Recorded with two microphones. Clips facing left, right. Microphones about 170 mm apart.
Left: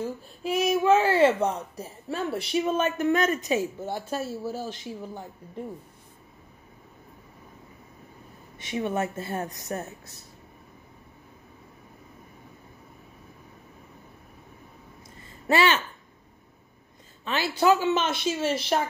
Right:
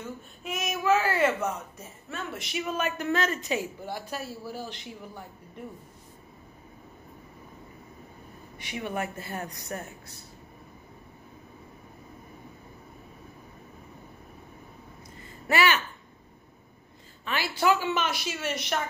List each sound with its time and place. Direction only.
0.0 s speech: 30° left (ahead or behind)
4.5 s speech: 15° right (ahead or behind)
8.5 s speech: 25° left (ahead or behind)
15.4 s speech: 25° left (ahead or behind)
17.2 s speech: 20° left (ahead or behind)